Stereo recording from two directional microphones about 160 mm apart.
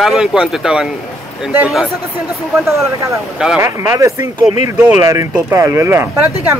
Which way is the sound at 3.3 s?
5° right (ahead or behind).